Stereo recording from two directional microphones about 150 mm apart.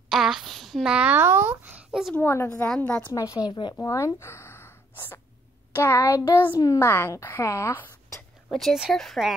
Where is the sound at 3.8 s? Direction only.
20° left (ahead or behind).